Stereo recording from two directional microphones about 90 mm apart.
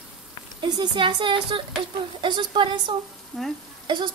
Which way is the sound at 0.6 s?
55° right (ahead or behind).